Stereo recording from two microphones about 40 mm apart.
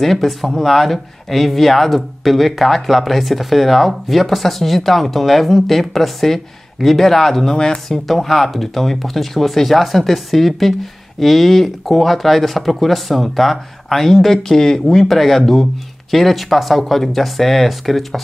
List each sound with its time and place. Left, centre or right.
0.0 s speech: centre
8.1 s speech: centre